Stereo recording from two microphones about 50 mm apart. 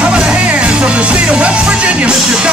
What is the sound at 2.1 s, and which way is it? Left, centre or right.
Music, centre.